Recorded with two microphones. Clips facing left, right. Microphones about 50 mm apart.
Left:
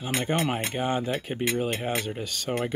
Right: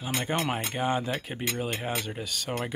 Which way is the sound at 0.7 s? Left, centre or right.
Centre.